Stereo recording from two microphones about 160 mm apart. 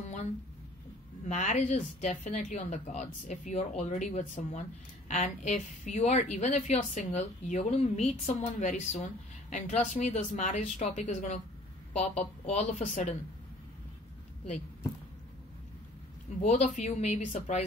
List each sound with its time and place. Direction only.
1.2 s a woman's voice: 45° left (ahead or behind)
16.4 s a woman's voice: 45° left (ahead or behind)